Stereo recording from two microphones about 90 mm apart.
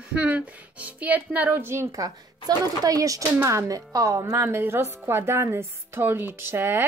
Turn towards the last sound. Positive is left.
turn(degrees=-25)  # may be behind; listen again after turning